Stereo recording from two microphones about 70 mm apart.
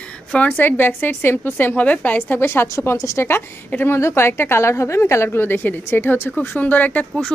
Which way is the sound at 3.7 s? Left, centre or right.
Left.